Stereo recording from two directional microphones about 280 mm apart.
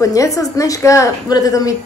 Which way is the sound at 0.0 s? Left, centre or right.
Centre.